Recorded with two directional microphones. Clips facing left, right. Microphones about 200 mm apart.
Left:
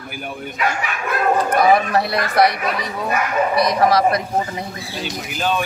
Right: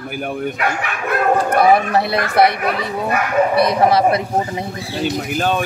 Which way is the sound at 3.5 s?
60° right (ahead or behind).